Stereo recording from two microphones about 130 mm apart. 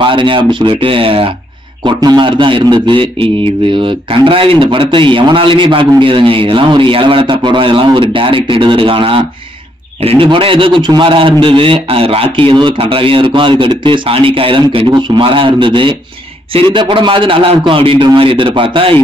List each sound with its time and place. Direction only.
0.0 s a man's voice: 40° right (ahead or behind)
1.9 s a man's voice: 35° right (ahead or behind)